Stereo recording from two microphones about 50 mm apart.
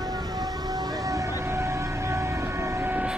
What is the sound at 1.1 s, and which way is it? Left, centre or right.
Siren, right.